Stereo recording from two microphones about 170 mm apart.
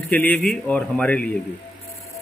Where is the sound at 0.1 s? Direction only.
10° left (ahead or behind).